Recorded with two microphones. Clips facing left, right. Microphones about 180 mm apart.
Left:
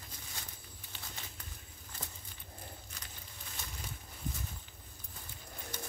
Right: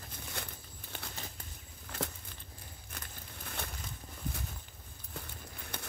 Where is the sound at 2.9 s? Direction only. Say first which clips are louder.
Right 4 dB; 55° right (ahead or behind).